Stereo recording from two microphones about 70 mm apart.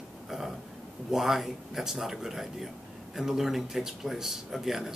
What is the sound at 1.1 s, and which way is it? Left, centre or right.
Speech, centre.